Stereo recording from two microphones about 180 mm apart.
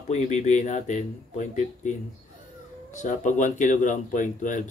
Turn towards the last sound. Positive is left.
turn(degrees=45)  # may be behind; listen again after turning